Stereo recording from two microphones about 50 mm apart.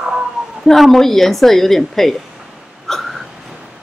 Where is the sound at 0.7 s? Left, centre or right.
Centre.